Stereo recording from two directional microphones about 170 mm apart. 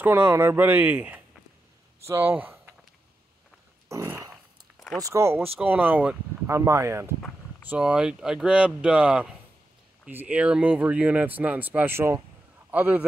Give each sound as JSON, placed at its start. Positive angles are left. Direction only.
{"t": 0.0, "sound": "speech", "side_deg": -15}
{"t": 3.9, "sound": "a sound", "side_deg": -15}
{"t": 4.9, "sound": "speech", "side_deg": -20}
{"t": 7.7, "sound": "speech", "side_deg": -5}